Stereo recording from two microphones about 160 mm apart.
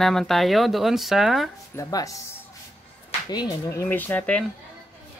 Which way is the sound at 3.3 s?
25° left (ahead or behind).